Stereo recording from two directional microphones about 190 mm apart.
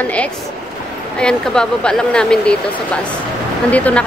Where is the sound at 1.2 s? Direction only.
5° left (ahead or behind).